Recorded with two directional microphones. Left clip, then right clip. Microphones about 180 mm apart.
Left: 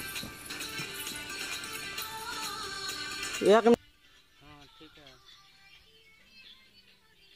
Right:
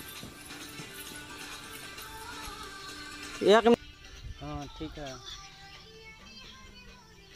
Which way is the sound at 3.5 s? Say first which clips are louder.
Even; 10° right (ahead or behind).